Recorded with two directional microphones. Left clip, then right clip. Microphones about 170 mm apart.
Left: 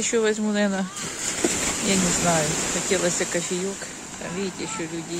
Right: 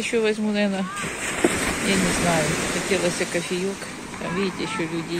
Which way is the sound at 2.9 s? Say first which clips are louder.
Even; 30° left (ahead or behind).